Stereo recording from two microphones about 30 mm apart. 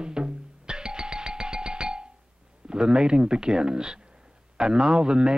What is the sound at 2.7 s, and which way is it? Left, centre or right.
Speech, right.